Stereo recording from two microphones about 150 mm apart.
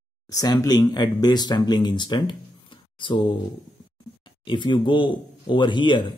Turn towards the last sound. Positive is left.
turn(degrees=30)  # may be behind; listen again after turning